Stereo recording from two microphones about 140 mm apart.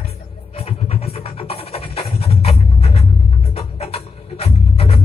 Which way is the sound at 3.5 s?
45° left (ahead or behind).